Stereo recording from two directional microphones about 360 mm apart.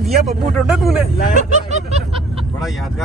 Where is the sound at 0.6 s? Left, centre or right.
Centre.